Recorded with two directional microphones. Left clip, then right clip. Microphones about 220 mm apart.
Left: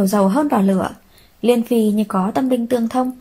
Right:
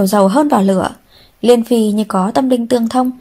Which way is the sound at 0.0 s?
30° right (ahead or behind).